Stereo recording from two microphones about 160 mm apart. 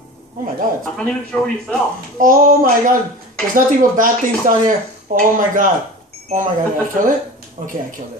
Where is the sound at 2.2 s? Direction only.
55° right (ahead or behind).